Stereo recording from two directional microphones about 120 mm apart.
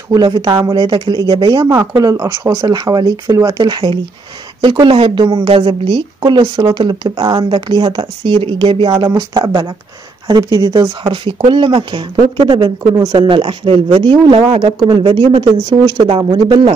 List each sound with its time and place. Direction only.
0.1 s speech: 35° right (ahead or behind)
1.7 s a woman's voice: 25° right (ahead or behind); by 8.9 s 45° right (ahead or behind)
8.9 s a woman's voice: 35° right (ahead or behind)